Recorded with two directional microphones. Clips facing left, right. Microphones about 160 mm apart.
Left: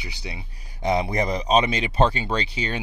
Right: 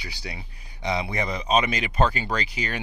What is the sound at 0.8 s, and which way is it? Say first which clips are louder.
Speech: left 5 dB; 45° left (ahead or behind).